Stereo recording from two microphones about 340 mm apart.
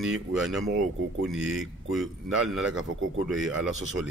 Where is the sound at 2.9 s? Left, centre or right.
Right.